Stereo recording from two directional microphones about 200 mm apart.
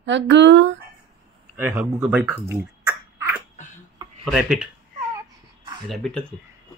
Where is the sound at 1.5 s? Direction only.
10° right (ahead or behind).